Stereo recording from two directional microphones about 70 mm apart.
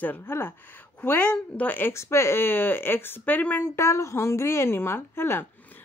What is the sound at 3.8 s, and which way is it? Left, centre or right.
Speech, left.